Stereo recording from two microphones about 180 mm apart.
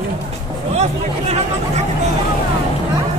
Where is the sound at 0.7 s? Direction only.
35° right (ahead or behind).